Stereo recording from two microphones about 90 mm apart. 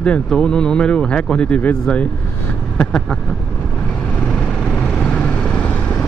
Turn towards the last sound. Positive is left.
turn(degrees=15)  # may be behind; listen again after turning